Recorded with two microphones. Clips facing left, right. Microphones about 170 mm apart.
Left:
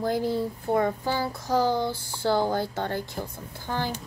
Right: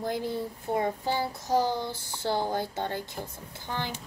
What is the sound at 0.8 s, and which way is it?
Speech, 25° right (ahead or behind).